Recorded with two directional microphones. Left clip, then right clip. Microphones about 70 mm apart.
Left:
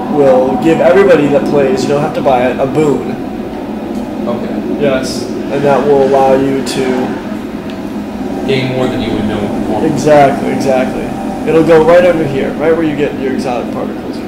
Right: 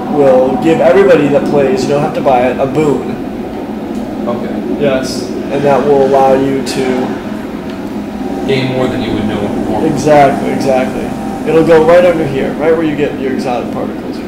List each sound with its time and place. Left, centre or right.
0.2 s speech: centre
5.7 s speech: left
9.9 s speech: centre